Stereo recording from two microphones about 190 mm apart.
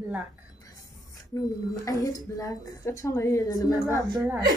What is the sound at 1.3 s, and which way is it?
A woman's voice, 20° left (ahead or behind).